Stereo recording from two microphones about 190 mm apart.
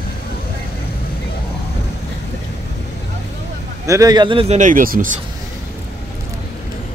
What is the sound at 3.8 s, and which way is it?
Speech, 15° right (ahead or behind).